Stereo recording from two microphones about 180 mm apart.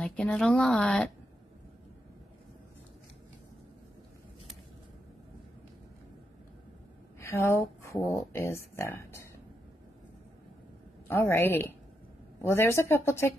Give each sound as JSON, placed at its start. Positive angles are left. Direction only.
{"t": 0.0, "sound": "a woman's voice", "side_deg": 5}
{"t": 7.2, "sound": "a woman's voice", "side_deg": 15}
{"t": 11.1, "sound": "speech", "side_deg": 10}